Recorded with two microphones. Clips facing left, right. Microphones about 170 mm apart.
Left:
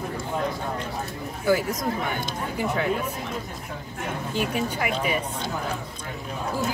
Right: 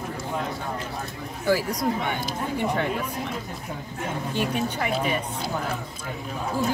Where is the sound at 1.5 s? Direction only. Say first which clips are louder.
Even; centre (ahead or behind).